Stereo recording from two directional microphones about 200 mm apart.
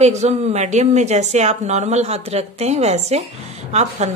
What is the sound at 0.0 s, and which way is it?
A woman's voice, 35° right (ahead or behind).